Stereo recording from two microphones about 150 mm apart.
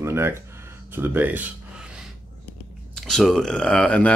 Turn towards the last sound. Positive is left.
turn(degrees=5)  # may be behind; listen again after turning